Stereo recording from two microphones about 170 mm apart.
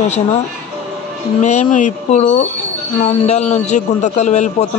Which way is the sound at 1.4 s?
45° left (ahead or behind).